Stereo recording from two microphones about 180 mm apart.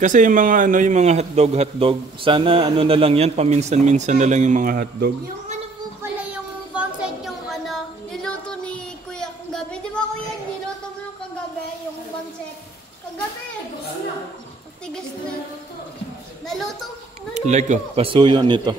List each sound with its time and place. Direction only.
0.0 s a man's voice: 45° right (ahead or behind)
6.3 s child singing: 5° right (ahead or behind)
16.4 s a sound: centre (ahead or behind)
17.3 s speech: 40° right (ahead or behind); by 18.8 s 25° right (ahead or behind)